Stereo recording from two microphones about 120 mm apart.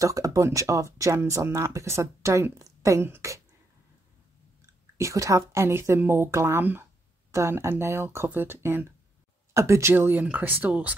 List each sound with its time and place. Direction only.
0.0 s speech: 30° right (ahead or behind)
4.9 s speech: 25° right (ahead or behind)